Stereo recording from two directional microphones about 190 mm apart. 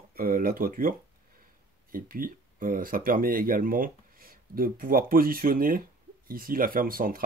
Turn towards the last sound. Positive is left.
turn(degrees=-50)  # may be behind; listen again after turning